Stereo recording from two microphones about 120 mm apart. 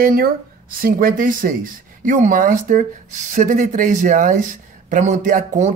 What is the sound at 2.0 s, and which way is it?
A man's voice, 90° right.